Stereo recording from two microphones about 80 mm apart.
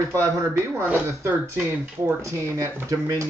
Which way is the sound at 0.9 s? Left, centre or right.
Right.